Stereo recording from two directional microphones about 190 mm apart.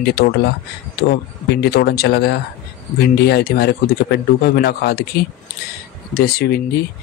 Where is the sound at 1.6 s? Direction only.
60° left (ahead or behind).